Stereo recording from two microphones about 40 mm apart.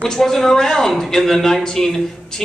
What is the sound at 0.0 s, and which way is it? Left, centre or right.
Speech, centre.